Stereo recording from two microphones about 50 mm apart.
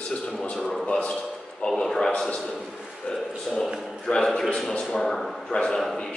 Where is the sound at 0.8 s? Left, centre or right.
Left.